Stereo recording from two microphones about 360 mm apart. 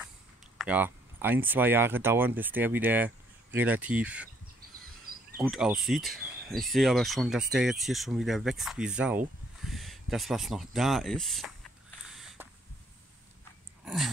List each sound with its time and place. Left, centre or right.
0.6 s speech: centre
5.4 s speech: centre
9.6 s a sound: centre